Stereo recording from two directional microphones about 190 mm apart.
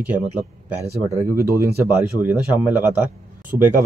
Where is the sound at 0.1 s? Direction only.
10° right (ahead or behind).